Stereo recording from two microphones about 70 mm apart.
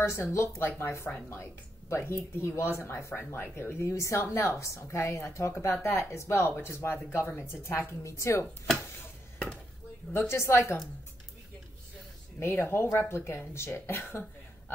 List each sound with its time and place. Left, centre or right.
0.0 s speech: left
6.9 s speech: left
10.1 s speech: left
12.4 s speech: left